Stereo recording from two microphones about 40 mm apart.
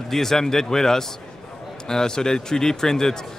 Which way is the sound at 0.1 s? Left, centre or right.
Centre.